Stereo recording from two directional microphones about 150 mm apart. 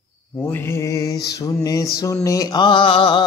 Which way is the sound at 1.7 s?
20° left (ahead or behind).